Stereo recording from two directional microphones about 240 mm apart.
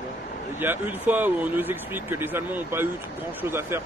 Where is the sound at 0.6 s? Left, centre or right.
Centre.